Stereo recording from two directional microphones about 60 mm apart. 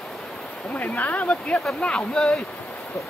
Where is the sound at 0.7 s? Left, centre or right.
Left.